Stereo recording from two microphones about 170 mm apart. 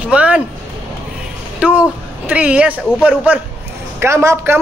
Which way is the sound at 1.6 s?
5° right (ahead or behind).